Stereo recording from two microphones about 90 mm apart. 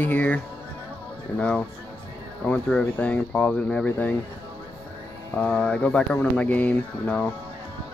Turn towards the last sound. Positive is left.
turn(degrees=15)  # may be behind; listen again after turning